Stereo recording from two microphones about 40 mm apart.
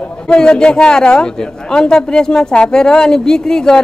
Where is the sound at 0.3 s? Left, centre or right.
Left.